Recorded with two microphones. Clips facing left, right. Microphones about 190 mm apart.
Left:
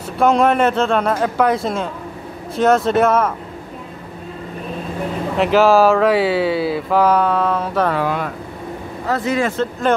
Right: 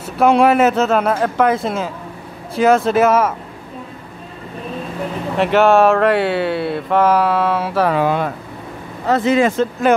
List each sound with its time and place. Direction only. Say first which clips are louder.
0.2 s speech: right 2 dB; 5° right (ahead or behind)
5.4 s speech: even; centre (ahead or behind)
7.9 s speech: right 3 dB; 20° right (ahead or behind)